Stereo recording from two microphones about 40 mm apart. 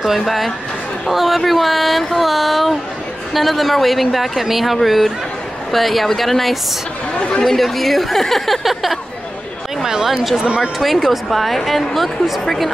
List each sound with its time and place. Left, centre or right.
0.2 s speech: centre
7.2 s speech: left
7.4 s speech: centre
9.8 s speech: centre
10.8 s speech: centre